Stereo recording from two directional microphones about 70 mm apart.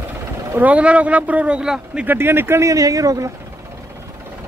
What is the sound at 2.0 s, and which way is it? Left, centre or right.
Speech, right.